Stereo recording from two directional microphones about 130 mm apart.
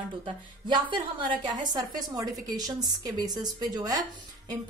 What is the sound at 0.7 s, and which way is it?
A woman's voice, 40° right (ahead or behind).